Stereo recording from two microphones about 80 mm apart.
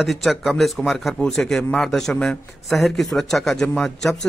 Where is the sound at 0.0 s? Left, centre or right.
Centre.